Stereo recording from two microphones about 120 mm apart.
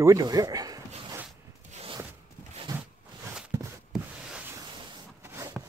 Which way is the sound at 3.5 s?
25° right (ahead or behind).